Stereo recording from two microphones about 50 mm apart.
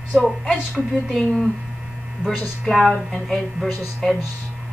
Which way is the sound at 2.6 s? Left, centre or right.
Centre.